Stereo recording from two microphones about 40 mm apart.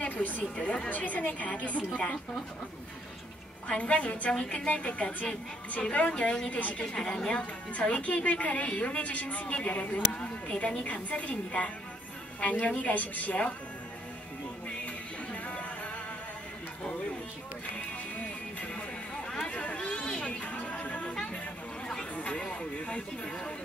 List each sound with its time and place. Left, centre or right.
0.1 s a sound: left
0.4 s a woman's voice: left
3.6 s a woman's voice: left
6.5 s a woman's voice: left
6.9 s a woman's voice: centre
7.3 s a woman's voice: left
15.3 s music: left
19.5 s chatter: left
21.0 s a sound: left
22.8 s speech: left